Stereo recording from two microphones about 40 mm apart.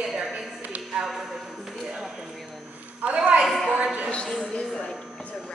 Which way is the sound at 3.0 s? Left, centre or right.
Right.